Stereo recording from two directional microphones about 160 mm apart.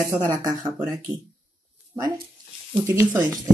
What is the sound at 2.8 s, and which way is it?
Speech, 10° right (ahead or behind).